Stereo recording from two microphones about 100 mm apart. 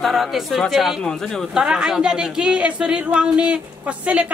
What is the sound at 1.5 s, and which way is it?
Speech, 5° right (ahead or behind).